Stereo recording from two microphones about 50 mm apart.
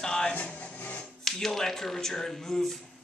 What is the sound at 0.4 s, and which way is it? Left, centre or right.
Music, left.